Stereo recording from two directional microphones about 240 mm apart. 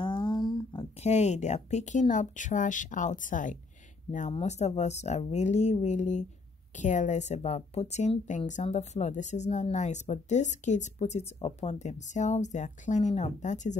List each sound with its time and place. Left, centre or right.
0.0 s speech: centre